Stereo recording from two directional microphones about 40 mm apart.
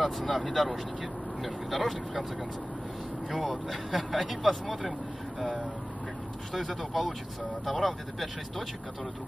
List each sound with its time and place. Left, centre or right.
0.0 s speech: centre
3.3 s speech: centre